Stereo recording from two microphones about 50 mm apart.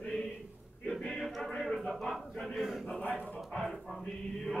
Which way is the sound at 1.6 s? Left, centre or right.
Centre.